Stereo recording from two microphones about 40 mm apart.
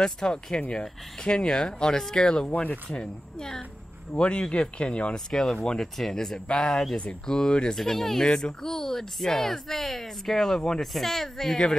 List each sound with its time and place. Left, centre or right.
0.0 s speech: centre
2.5 s speech: left
5.1 s speech: centre